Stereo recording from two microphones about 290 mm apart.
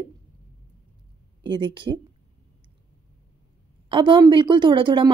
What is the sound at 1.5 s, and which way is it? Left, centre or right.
Speech, centre.